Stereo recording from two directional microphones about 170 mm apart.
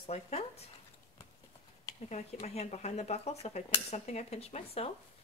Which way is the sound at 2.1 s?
40° left (ahead or behind).